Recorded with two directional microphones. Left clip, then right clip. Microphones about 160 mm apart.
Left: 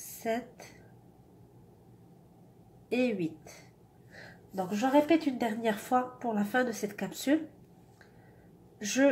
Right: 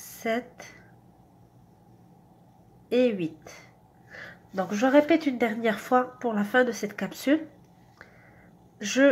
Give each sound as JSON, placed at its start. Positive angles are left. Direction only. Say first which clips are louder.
{"t": 0.2, "sound": "a woman's voice", "louder": "right 5 dB", "side_deg": -15}
{"t": 2.9, "sound": "a woman's voice", "louder": "right 7 dB", "side_deg": -15}
{"t": 8.7, "sound": "speech", "louder": "right 5 dB", "side_deg": -15}